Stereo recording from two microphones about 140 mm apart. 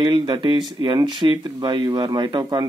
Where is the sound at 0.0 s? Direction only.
30° right (ahead or behind).